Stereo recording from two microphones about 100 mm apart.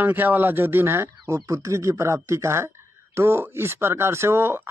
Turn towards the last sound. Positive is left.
turn(degrees=-25)  # may be behind; listen again after turning